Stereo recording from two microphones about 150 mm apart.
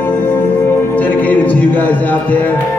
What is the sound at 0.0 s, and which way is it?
Music, 15° left (ahead or behind).